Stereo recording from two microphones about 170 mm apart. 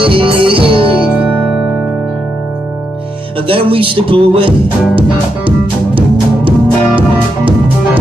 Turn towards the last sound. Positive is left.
turn(degrees=-30)  # may be behind; listen again after turning